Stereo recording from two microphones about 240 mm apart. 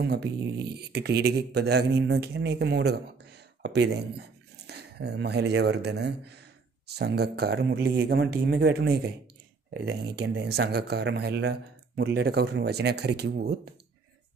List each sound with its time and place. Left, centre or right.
0.0 s speech: right